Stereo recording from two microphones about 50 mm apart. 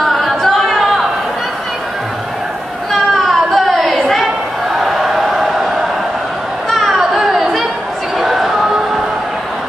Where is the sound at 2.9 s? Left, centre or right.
Centre.